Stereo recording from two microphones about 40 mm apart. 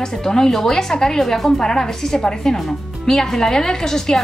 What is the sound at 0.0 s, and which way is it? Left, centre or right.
A woman's voice, centre.